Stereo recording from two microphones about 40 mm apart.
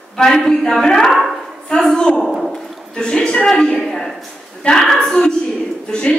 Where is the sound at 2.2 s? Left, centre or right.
Centre.